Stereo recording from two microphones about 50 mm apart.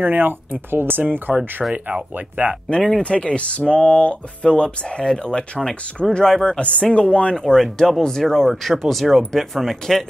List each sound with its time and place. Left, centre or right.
0.0 s speech: right
3.0 s speech: left
6.6 s speech: left
7.4 s speech: centre